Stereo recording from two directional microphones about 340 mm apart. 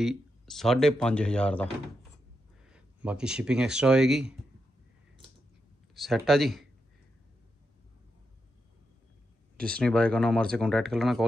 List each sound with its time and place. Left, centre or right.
0.0 s speech: centre
2.7 s speech: centre
5.9 s speech: centre
9.6 s speech: centre